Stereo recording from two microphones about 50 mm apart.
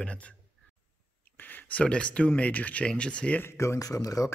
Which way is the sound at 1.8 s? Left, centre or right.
Left.